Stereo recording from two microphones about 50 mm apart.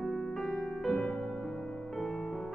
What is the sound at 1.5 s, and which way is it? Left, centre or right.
Music, left.